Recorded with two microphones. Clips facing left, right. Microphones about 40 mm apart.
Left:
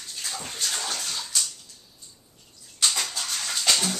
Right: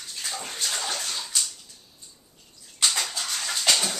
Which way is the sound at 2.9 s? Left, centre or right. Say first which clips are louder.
Right 1 dB; centre.